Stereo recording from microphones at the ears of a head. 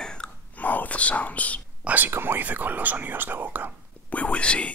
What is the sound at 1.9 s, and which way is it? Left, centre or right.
Speech, right.